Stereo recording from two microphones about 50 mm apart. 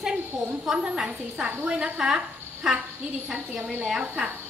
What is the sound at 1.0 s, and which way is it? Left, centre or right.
A woman's voice, right.